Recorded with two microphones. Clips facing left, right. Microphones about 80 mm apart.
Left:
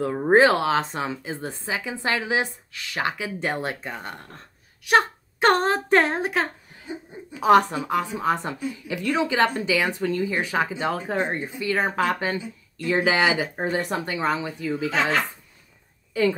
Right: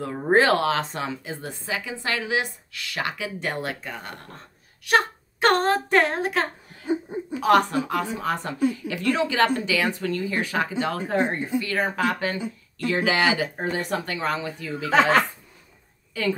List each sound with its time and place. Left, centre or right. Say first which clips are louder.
0.0 s a woman's voice: left 3 dB; centre
4.8 s a sound: left 2 dB; centre
7.3 s a woman's voice: left 2 dB; centre
11.9 s a woman's voice: left 1 dB; left
14.9 s speech: right 6 dB; right
16.1 s a woman's voice: left 4 dB; left